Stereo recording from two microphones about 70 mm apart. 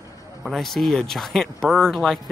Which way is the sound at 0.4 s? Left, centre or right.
Centre.